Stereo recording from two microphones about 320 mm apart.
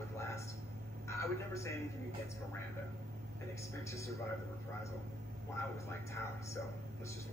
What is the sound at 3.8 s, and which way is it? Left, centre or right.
Speech, centre.